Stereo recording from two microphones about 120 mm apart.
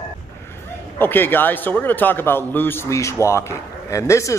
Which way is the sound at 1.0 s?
15° left (ahead or behind).